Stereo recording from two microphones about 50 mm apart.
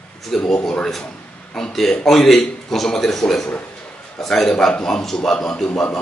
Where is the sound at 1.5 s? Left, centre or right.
Centre.